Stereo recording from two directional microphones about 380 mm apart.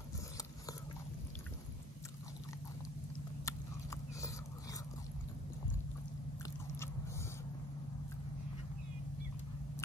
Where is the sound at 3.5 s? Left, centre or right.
Centre.